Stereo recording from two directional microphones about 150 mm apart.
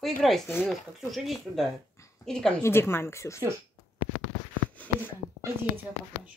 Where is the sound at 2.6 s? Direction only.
15° left (ahead or behind).